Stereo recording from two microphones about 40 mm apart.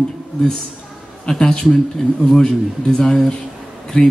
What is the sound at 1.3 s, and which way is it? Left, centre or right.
Speech, centre.